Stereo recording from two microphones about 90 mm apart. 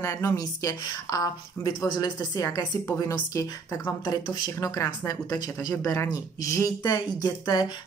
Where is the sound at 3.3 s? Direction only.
40° left (ahead or behind).